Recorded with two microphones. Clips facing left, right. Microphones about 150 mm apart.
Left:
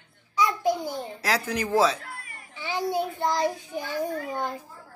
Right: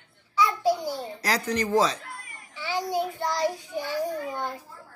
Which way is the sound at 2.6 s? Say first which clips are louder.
Even; 20° left (ahead or behind).